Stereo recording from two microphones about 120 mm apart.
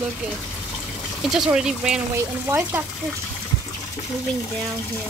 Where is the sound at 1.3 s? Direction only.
5° right (ahead or behind).